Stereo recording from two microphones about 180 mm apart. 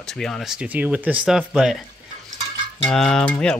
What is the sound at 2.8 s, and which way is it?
Speech, 5° left (ahead or behind).